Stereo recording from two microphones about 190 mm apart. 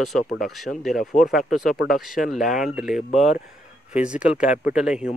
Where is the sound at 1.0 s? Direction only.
45° left (ahead or behind).